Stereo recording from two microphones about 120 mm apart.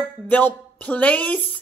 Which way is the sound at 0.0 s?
15° left (ahead or behind).